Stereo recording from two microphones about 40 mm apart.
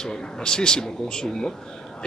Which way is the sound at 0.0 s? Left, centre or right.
Centre.